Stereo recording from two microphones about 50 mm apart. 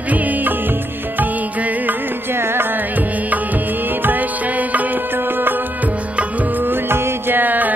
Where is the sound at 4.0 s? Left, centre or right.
Right.